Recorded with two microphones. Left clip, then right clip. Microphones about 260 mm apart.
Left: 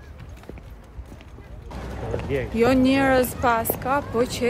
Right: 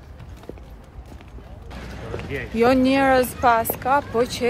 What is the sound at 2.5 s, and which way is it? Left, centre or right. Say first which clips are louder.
Speech: right 2 dB; centre.